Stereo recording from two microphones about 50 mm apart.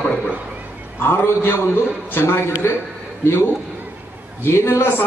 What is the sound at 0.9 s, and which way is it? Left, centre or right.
A man's voice, left.